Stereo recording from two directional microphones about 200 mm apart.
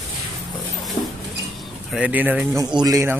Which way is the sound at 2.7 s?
20° right (ahead or behind).